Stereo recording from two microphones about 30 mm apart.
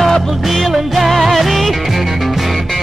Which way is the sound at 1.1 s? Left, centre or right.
Centre.